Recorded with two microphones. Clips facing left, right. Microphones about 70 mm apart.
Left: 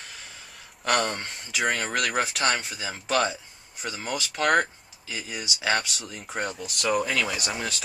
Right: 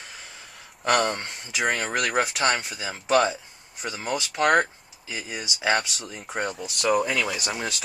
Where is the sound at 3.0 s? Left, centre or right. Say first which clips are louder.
Right 4 dB; right.